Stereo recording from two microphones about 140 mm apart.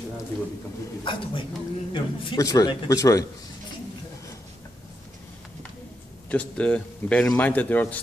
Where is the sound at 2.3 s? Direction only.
25° left (ahead or behind).